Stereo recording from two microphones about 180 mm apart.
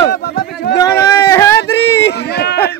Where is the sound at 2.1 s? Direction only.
65° left (ahead or behind).